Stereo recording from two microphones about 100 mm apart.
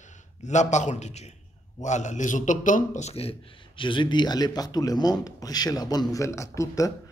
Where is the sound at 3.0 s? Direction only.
85° left.